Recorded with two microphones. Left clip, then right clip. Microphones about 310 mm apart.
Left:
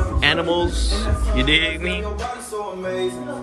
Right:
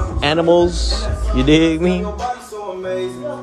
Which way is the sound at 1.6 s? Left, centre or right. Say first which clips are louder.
Right 6 dB; centre.